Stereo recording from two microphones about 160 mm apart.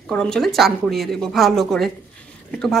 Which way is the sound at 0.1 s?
5° left (ahead or behind).